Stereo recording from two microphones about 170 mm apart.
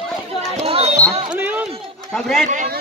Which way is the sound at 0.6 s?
35° right (ahead or behind).